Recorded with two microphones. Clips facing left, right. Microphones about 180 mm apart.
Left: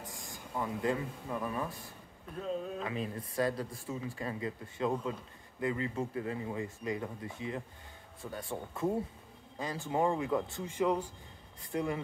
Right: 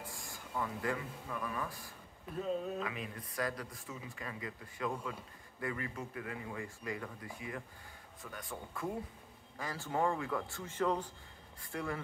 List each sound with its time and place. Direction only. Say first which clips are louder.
0.1 s a man's voice: left 3 dB; 20° left (ahead or behind)
2.3 s speech: even; centre (ahead or behind)
2.8 s speech: left 4 dB; 30° left (ahead or behind)